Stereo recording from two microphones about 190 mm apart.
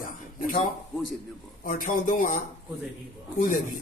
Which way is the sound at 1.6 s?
45° left (ahead or behind).